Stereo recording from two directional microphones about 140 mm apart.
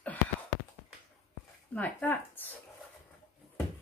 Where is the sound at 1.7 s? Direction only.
10° left (ahead or behind).